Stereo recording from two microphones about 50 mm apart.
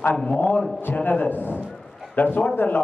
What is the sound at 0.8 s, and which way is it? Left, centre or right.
A man's voice, left.